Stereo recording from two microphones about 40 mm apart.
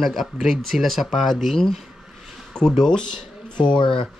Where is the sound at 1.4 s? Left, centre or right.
Centre.